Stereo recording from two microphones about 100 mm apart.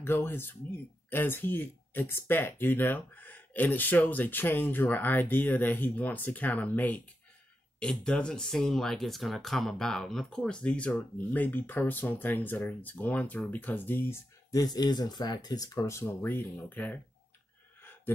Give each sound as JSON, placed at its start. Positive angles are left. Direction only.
{"t": 0.0, "sound": "speech", "side_deg": 20}
{"t": 14.5, "sound": "speech", "side_deg": 40}